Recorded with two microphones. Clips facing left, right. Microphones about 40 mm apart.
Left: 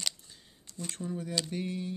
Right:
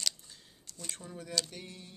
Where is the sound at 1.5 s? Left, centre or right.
Centre.